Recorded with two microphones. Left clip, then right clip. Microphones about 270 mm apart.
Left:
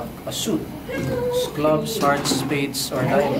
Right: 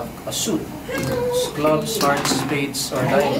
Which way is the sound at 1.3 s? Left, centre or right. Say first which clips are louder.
Right 1 dB; centre.